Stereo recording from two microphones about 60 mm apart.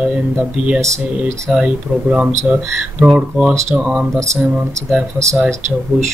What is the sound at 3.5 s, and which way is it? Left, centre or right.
Speech, right.